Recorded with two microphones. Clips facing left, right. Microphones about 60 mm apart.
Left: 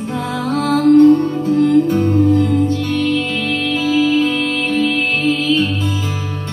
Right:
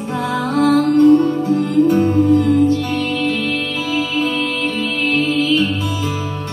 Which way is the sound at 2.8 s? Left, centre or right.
Right.